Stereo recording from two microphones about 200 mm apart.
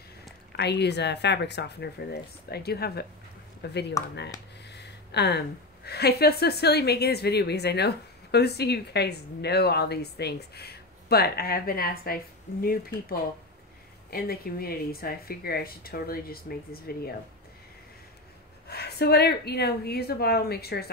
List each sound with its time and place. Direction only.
0.6 s speech: 55° left (ahead or behind)
4.6 s a sound: 55° left (ahead or behind)
5.9 s speech: 55° left (ahead or behind)
14.1 s speech: 50° left (ahead or behind)
18.7 s speech: 55° left (ahead or behind)